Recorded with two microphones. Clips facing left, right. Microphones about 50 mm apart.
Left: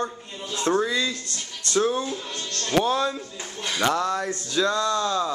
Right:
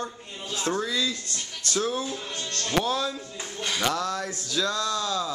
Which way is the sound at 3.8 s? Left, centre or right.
Centre.